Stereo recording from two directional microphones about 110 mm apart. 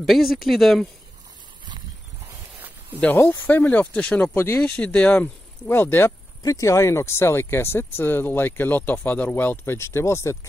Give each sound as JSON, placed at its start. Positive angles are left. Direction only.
{"t": 0.0, "sound": "speech", "side_deg": 0}
{"t": 3.0, "sound": "speech", "side_deg": 15}
{"t": 6.4, "sound": "speech", "side_deg": 30}